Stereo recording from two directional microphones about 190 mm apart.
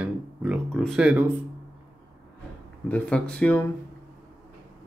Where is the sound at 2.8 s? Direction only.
5° left (ahead or behind).